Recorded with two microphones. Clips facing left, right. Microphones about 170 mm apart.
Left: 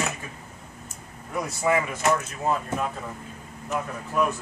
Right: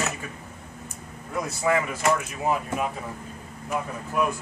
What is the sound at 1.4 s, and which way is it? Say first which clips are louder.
Speech: even; 15° left (ahead or behind).